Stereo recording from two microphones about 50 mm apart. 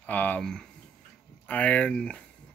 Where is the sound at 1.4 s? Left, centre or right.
Left.